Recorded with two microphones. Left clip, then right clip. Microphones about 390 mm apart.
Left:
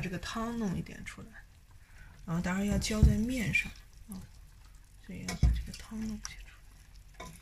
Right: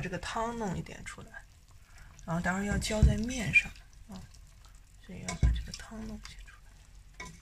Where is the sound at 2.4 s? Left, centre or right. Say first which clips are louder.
Right 1 dB; centre.